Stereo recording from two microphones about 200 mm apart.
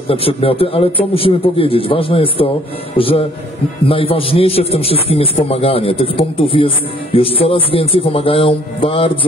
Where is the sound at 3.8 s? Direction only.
25° left (ahead or behind).